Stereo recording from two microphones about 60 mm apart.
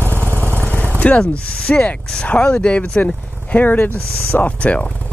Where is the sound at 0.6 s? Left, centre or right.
Left.